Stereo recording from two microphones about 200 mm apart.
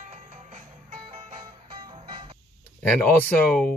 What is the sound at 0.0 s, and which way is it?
Music, 35° right (ahead or behind).